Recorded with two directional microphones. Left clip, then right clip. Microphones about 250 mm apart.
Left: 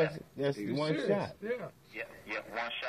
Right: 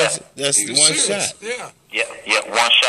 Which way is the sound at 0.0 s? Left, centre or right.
Right.